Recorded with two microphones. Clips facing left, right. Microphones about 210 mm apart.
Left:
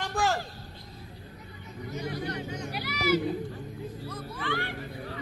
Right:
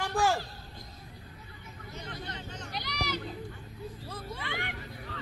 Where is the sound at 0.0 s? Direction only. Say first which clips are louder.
Even; 10° right (ahead or behind).